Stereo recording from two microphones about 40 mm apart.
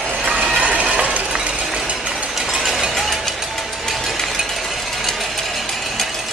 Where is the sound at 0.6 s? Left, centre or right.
Right.